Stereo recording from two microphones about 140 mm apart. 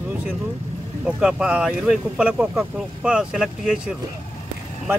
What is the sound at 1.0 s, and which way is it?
Speech, 5° right (ahead or behind).